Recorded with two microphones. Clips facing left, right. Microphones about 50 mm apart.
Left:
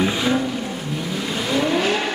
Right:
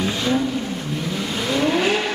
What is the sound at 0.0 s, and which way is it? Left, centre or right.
Vehicle, centre.